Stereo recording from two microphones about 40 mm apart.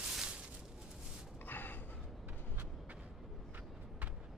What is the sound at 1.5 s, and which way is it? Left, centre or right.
Gasp, left.